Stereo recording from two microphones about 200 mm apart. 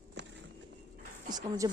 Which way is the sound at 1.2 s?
20° right (ahead or behind).